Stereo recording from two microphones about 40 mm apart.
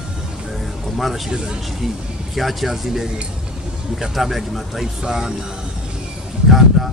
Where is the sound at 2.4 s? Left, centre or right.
Centre.